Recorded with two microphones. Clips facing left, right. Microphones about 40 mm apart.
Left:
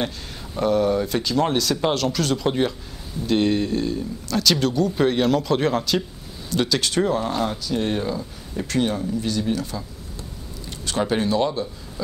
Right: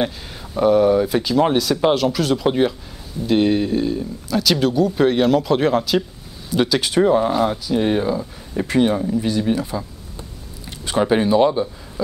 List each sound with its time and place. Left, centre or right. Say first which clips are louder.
0.6 s speech: right 5 dB; centre
10.9 s speech: right 5 dB; centre